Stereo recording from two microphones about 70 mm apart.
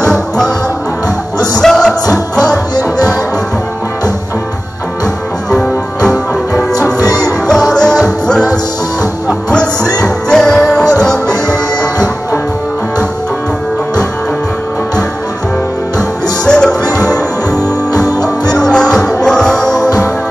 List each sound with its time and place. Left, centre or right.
0.0 s music: centre
1.6 s music: centre
5.5 s music: centre
10.0 s music: centre
16.4 s music: centre
17.9 s music: left
18.5 s music: centre